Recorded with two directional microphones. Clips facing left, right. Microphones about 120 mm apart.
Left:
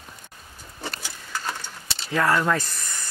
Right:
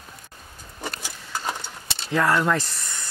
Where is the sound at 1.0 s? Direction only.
20° right (ahead or behind).